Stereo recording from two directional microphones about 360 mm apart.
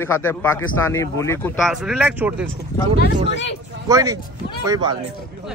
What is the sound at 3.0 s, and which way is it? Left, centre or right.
Speech, left.